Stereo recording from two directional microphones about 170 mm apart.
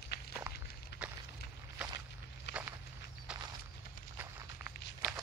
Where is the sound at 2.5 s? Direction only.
90° left.